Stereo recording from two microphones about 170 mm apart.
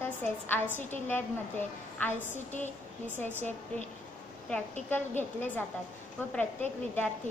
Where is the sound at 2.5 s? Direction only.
45° left (ahead or behind).